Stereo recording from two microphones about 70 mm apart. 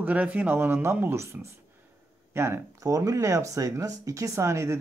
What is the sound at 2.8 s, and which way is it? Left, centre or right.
Speech, right.